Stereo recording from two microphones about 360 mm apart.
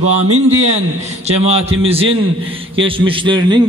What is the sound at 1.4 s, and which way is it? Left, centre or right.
A man's voice, centre.